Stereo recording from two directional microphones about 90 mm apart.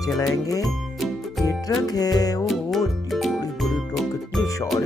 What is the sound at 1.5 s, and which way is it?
Music, 45° left (ahead or behind).